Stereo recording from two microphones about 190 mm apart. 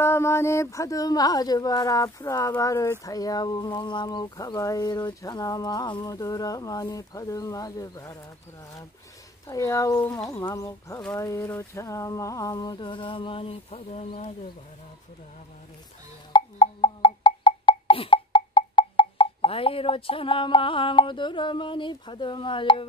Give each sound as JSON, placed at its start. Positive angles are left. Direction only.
{"t": 0.0, "sound": "speech", "side_deg": 15}
{"t": 9.5, "sound": "speech", "side_deg": 15}
{"t": 16.3, "sound": "wood block", "side_deg": 25}